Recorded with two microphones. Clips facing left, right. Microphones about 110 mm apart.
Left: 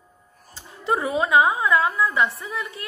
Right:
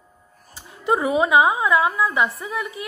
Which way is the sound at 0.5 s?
15° right (ahead or behind).